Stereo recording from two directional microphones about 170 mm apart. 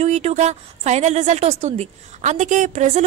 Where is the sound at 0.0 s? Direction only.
40° right (ahead or behind).